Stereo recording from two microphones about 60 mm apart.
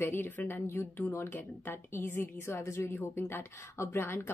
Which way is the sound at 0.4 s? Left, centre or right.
Left.